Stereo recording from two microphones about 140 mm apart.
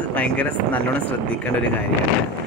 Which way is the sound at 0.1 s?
10° left (ahead or behind).